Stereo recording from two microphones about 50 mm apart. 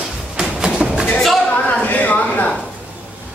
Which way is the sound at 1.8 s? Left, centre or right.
Left.